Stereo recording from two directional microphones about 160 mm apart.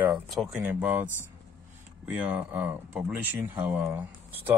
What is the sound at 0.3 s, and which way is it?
Speech, 5° right (ahead or behind).